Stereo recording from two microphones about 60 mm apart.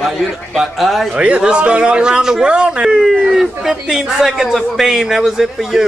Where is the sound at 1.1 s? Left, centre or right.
Centre.